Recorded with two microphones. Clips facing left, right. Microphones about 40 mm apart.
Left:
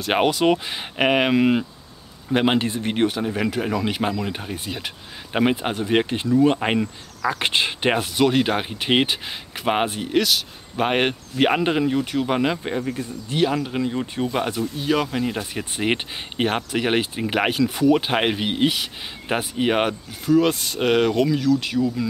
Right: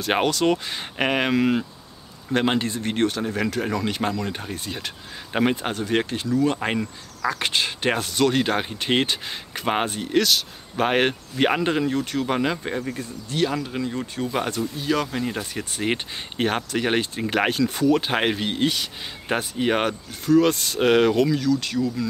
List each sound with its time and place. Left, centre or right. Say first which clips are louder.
0.2 s speech: left 2 dB; centre
13.3 s speech: left 3 dB; centre
14.3 s speech: left 1 dB; centre